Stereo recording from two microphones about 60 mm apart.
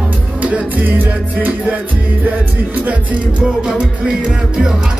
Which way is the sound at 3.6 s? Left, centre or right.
Centre.